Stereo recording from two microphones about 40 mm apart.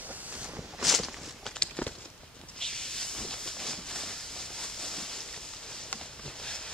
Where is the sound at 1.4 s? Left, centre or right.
Centre.